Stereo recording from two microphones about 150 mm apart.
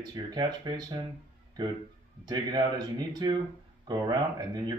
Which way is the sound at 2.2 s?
30° right (ahead or behind).